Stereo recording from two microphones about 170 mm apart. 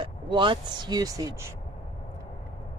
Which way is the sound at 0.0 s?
30° right (ahead or behind).